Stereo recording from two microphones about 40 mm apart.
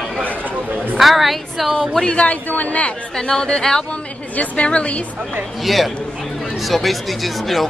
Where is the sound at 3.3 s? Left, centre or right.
Centre.